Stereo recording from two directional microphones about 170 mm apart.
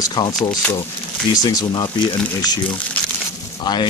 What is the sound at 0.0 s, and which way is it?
Speech, 25° left (ahead or behind).